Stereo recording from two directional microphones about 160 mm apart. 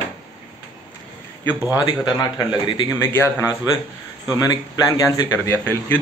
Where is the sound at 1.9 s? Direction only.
25° left (ahead or behind).